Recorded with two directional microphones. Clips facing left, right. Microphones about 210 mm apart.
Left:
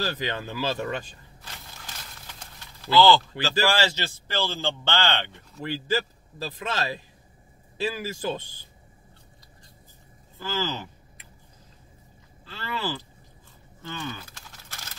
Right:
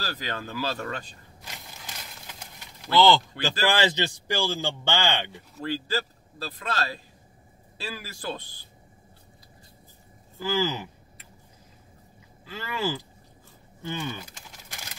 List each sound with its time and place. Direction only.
0.0 s speech: 20° left (ahead or behind)
2.8 s speech: 15° right (ahead or behind)
5.6 s a man's voice: 15° left (ahead or behind)
10.4 s speech: 10° right (ahead or behind)
12.4 s speech: 10° right (ahead or behind)
13.9 s pigeon: 15° right (ahead or behind)